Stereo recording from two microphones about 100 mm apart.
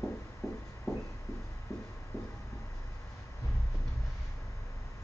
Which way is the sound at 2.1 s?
30° left (ahead or behind).